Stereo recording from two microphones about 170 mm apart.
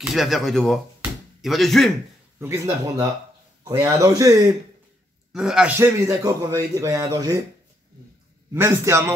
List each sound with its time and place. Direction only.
0.0 s speech: centre (ahead or behind)
2.3 s a man's voice: 15° right (ahead or behind)
5.3 s speech: 5° right (ahead or behind)
5.8 s a man's voice: 15° right (ahead or behind)
8.5 s a man's voice: 15° right (ahead or behind)